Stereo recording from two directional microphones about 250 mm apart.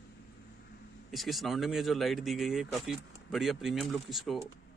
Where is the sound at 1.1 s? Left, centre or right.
Centre.